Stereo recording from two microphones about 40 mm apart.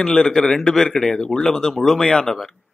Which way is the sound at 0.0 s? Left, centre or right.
Left.